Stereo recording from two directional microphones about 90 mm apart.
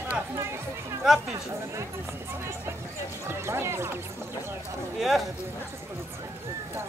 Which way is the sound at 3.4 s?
30° right (ahead or behind).